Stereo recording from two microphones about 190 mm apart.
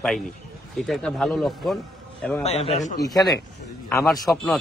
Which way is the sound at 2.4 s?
35° left (ahead or behind).